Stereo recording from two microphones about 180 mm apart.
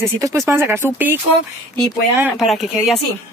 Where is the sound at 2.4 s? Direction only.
Centre (ahead or behind).